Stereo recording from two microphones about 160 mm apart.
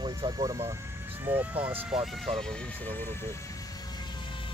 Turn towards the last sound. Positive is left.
turn(degrees=15)  # may be behind; listen again after turning